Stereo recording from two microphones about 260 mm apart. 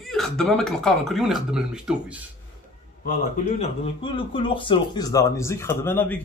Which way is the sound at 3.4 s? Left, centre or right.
Left.